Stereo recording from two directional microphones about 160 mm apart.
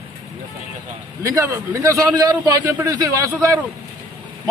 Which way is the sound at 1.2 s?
20° right (ahead or behind).